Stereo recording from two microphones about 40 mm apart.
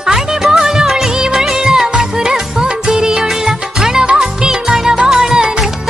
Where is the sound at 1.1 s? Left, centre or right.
Centre.